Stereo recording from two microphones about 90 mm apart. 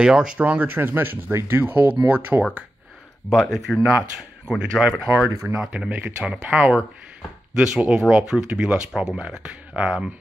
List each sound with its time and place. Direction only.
0.0 s speech: 10° right (ahead or behind)
3.3 s speech: centre (ahead or behind)
5.3 s speech: 35° right (ahead or behind)
5.6 s speech: 15° right (ahead or behind)
7.5 s speech: 10° right (ahead or behind)